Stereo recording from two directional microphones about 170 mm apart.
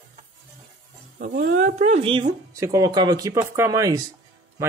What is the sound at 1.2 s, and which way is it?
Speech, 55° right (ahead or behind).